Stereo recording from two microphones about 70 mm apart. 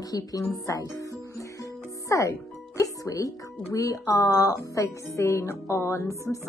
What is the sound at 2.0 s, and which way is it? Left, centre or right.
A woman's voice, left.